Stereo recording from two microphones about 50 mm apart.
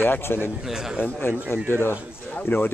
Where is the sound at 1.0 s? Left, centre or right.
Left.